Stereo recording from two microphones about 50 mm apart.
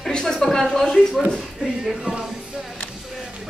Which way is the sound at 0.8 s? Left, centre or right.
Centre.